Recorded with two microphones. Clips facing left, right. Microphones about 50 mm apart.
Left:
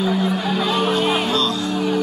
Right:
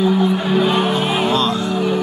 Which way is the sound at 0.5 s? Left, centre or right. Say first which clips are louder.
Right 3 dB; right.